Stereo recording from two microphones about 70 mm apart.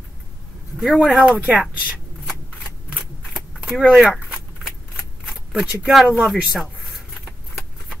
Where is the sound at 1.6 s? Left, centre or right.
Centre.